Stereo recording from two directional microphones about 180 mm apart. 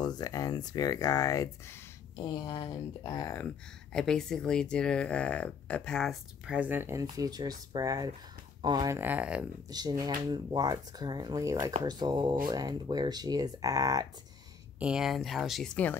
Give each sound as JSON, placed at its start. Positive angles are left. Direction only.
{"t": 0.0, "sound": "speech", "side_deg": 20}
{"t": 3.4, "sound": "speech", "side_deg": 5}
{"t": 8.9, "sound": "speech", "side_deg": -10}
{"t": 9.7, "sound": "speech", "side_deg": -20}
{"t": 14.8, "sound": "speech", "side_deg": -5}